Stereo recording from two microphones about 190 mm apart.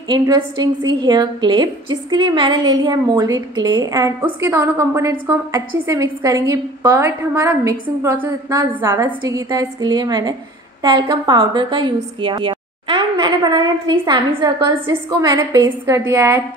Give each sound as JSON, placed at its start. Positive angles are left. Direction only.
{"t": 0.1, "sound": "a woman's voice", "side_deg": -20}